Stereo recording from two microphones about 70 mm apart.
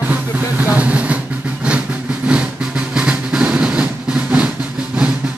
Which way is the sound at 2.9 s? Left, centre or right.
Centre.